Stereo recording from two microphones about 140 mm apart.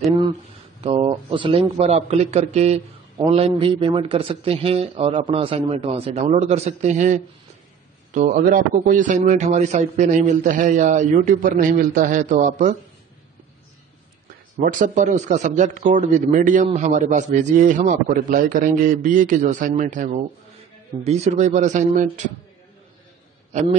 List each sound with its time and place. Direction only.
0.7 s speech: 45° right (ahead or behind)
1.8 s a man's voice: 50° right (ahead or behind)
6.2 s a man's voice: 55° right (ahead or behind)
14.6 s a man's voice: 75° right (ahead or behind)
21.0 s a man's voice: 50° right (ahead or behind)